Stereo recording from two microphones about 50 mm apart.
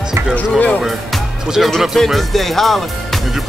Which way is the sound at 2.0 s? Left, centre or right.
Centre.